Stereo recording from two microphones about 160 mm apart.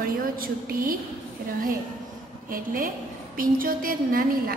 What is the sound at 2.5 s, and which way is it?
A woman's voice, 60° right (ahead or behind).